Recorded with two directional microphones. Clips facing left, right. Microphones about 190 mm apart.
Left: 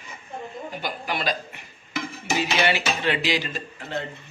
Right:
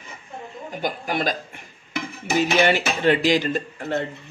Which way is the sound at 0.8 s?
45° right (ahead or behind).